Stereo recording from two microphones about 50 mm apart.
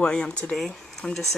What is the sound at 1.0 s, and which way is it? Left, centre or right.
Speech, centre.